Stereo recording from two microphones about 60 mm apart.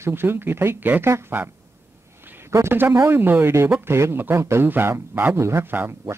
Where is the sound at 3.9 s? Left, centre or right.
Right.